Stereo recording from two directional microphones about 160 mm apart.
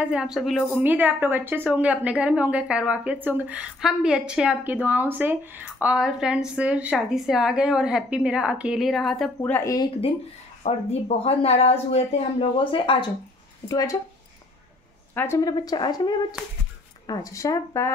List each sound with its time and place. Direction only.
0.0 s a woman's voice: 5° right (ahead or behind)
9.4 s a woman's voice: 15° left (ahead or behind)
10.6 s speech: 40° left (ahead or behind)
13.7 s speech: 20° left (ahead or behind)
15.1 s speech: 20° left (ahead or behind)